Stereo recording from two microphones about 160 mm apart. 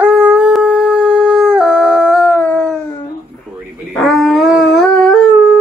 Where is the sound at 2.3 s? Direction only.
10° left (ahead or behind).